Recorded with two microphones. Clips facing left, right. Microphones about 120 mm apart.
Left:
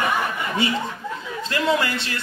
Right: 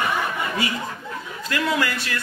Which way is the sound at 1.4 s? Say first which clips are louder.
Left 2 dB; 25° left (ahead or behind).